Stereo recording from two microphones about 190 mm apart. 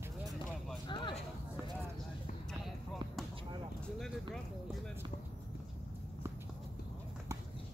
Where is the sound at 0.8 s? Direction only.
25° left (ahead or behind).